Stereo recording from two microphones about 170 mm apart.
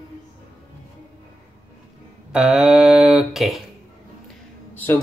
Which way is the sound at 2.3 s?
5° right (ahead or behind).